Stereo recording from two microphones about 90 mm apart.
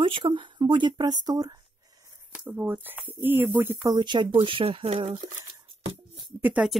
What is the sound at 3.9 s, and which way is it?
Speech, 60° right (ahead or behind).